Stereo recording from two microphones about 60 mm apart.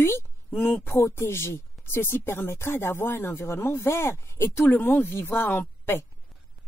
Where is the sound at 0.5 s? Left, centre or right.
Left.